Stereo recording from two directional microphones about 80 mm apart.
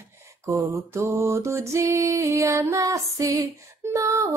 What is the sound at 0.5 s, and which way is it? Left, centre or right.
Music, right.